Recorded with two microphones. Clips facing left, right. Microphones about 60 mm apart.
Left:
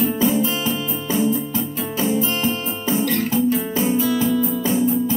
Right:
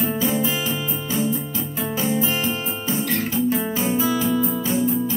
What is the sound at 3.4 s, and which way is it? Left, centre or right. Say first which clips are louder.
Music: left 2 dB; centre.